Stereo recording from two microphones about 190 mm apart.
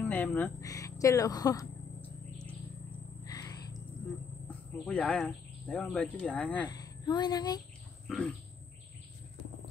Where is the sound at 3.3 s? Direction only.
20° left (ahead or behind).